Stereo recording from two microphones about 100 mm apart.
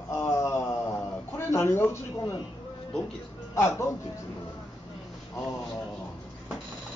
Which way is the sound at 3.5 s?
30° left (ahead or behind).